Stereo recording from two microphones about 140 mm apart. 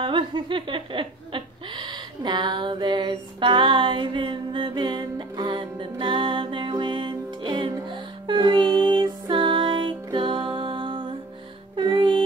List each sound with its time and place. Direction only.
0.0 s laughter: 35° right (ahead or behind)
11.7 s music: 35° right (ahead or behind)